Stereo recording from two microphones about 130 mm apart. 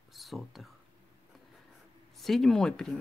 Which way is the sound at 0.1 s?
Centre (ahead or behind).